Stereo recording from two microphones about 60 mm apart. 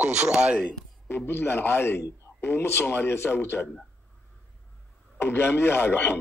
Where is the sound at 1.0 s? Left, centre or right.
Left.